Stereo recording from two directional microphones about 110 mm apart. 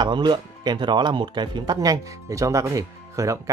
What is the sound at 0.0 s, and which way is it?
Speech, 45° right (ahead or behind).